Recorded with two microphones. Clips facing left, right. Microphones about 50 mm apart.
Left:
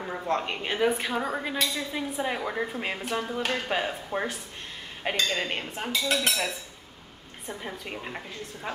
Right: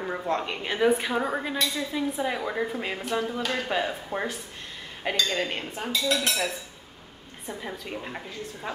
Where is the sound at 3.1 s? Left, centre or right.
Left.